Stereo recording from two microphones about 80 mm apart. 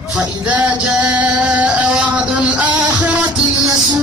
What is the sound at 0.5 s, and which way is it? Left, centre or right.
Music, centre.